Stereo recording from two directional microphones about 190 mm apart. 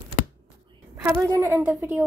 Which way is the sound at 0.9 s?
15° right (ahead or behind).